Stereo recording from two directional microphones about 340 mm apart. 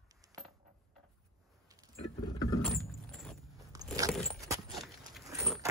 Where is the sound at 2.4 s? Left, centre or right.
Centre.